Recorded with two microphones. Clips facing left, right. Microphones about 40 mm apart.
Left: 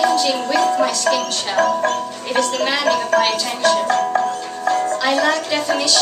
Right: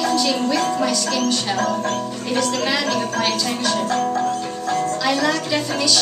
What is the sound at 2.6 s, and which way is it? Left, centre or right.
Speech, centre.